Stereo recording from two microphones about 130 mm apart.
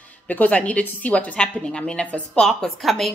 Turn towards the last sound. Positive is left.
turn(degrees=0)  # may be behind; listen again after turning